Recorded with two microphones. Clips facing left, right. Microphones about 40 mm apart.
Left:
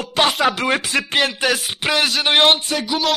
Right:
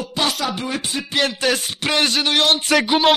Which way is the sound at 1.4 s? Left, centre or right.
Centre.